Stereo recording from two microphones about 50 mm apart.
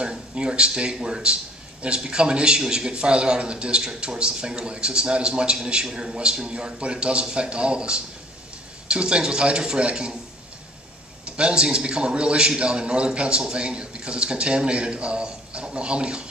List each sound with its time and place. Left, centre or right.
0.3 s a man's voice: centre
11.2 s a man's voice: centre